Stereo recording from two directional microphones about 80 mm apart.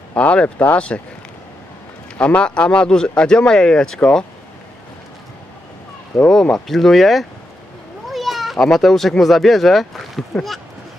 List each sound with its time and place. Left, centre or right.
0.1 s speech: centre
2.1 s speech: centre
6.1 s speech: centre
8.1 s cat: centre
8.6 s speech: centre